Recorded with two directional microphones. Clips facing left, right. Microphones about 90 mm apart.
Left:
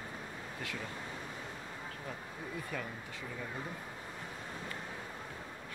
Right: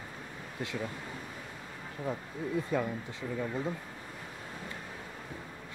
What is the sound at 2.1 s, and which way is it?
Speech, 20° right (ahead or behind).